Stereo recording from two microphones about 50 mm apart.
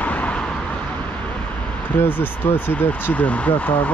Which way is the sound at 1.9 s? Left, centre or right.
Left.